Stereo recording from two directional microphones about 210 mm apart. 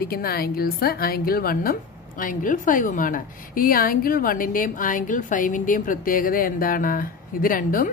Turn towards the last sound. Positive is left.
turn(degrees=40)  # may be behind; listen again after turning